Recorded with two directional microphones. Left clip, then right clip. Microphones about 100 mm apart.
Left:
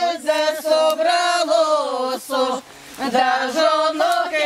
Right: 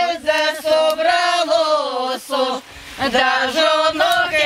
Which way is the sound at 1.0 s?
10° left (ahead or behind).